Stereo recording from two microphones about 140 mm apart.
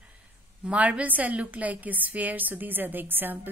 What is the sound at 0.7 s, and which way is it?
A woman's voice, 10° right (ahead or behind).